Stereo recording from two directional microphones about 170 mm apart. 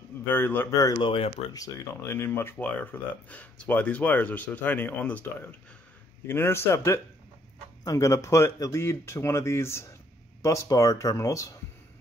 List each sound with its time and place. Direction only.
0.3 s speech: 10° left (ahead or behind); by 1.6 s 30° left (ahead or behind)
1.6 s speech: 15° left (ahead or behind)